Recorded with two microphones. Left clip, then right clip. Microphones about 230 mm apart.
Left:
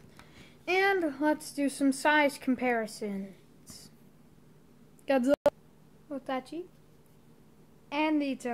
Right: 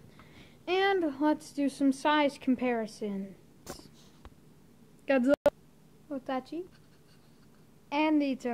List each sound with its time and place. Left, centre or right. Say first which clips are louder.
0.4 s speech: left 1 dB; centre
5.0 s a sound: even; centre
7.9 s a woman's voice: right 1 dB; centre